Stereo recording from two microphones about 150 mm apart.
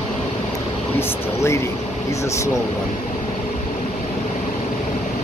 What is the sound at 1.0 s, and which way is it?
Speech, 20° left (ahead or behind).